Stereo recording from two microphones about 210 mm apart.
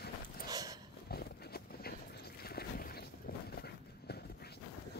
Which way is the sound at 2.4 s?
45° left (ahead or behind).